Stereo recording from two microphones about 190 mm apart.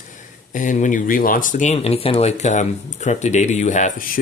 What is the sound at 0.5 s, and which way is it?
Speech, 40° left (ahead or behind).